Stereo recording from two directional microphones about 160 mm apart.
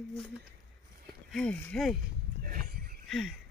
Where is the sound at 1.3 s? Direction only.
10° left (ahead or behind).